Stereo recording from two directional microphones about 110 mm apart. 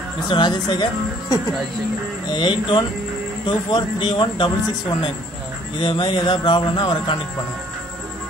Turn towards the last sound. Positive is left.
turn(degrees=40)  # may be behind; listen again after turning